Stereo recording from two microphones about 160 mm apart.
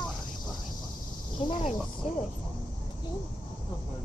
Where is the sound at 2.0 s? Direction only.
40° left (ahead or behind).